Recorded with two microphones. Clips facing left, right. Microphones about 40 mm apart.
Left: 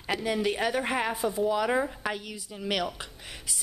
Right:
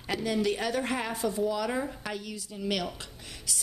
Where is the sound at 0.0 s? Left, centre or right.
Centre.